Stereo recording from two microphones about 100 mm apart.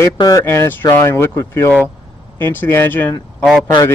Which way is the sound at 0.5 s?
25° left (ahead or behind).